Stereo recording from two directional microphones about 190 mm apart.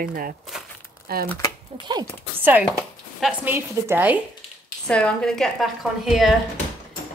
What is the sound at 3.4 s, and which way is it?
Speech, 10° right (ahead or behind).